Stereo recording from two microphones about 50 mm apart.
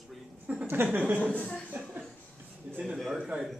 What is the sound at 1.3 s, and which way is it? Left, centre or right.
Speech, left.